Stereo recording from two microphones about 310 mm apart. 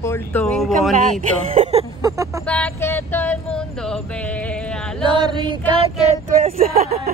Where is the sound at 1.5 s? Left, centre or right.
Centre.